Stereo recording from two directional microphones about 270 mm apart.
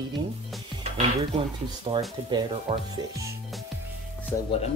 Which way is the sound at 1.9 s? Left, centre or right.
Right.